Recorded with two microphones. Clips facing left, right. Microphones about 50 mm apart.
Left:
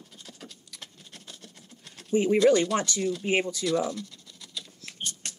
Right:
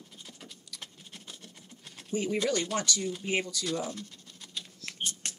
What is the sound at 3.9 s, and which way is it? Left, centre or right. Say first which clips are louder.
Scratch: left 4 dB; right.